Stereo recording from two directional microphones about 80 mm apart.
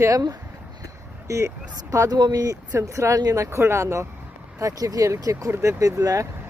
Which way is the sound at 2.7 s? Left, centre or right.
Right.